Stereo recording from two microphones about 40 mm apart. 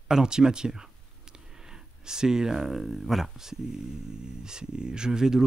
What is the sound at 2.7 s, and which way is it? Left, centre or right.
Speech, centre.